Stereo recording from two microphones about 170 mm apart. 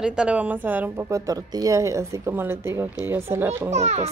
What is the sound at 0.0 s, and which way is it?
Speech, 5° right (ahead or behind).